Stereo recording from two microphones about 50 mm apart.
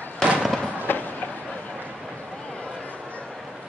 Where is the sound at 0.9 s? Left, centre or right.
Left.